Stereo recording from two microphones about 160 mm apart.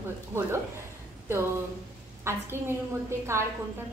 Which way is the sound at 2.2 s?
15° right (ahead or behind).